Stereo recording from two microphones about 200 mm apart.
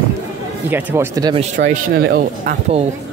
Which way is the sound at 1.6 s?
55° right (ahead or behind).